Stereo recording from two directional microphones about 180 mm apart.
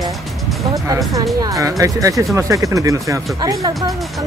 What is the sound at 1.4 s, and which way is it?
Speech, 20° right (ahead or behind).